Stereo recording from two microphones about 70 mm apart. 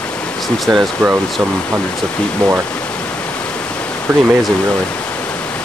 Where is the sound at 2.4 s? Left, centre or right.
Centre.